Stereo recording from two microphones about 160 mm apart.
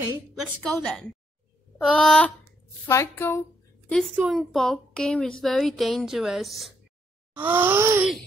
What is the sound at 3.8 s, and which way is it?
A woman's voice, 5° left (ahead or behind).